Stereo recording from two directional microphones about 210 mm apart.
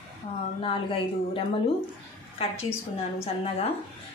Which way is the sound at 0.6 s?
25° left (ahead or behind).